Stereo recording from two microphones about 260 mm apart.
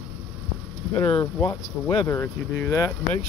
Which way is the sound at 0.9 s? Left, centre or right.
Centre.